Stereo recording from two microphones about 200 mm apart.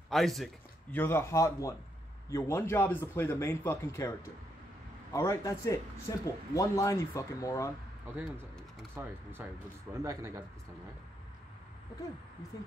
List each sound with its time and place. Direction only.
0.1 s a man's voice: centre (ahead or behind)
0.9 s speech: 10° left (ahead or behind)
5.1 s speech: 15° left (ahead or behind)
8.2 s speech: 10° right (ahead or behind)